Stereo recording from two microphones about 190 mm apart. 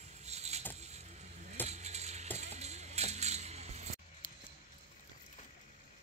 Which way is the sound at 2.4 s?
35° right (ahead or behind).